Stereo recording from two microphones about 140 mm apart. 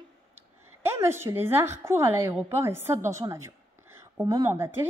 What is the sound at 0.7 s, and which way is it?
A woman's voice, 15° right (ahead or behind).